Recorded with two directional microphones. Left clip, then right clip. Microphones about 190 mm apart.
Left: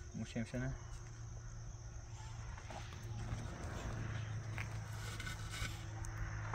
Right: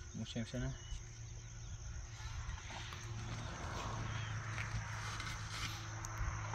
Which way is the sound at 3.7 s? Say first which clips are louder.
Right 5 dB; 35° left (ahead or behind).